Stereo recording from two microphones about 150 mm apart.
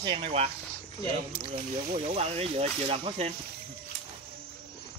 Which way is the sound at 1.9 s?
40° right (ahead or behind).